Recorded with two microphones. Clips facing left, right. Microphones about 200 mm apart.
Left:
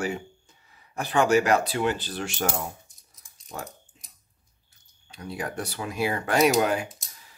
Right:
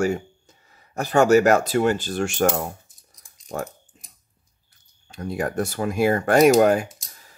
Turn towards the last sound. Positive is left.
turn(degrees=-45)  # may be behind; listen again after turning